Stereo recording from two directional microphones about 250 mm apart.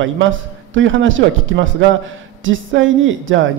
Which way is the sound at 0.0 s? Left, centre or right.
Right.